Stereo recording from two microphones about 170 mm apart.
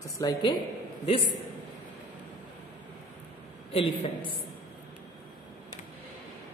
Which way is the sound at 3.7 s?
35° left (ahead or behind).